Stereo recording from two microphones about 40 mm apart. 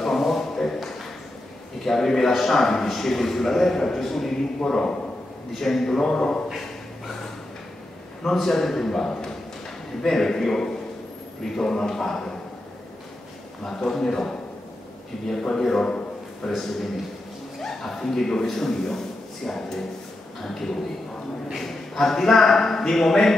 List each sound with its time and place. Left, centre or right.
0.0 s a sound: centre
1.9 s a man's voice: centre
8.3 s a man's voice: centre
13.7 s a man's voice: centre
16.4 s a man's voice: centre